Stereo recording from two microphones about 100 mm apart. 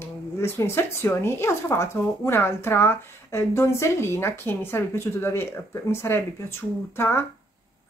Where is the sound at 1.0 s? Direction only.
25° left (ahead or behind).